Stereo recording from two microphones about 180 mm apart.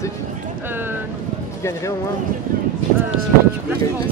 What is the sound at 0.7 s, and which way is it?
Speech, 10° right (ahead or behind).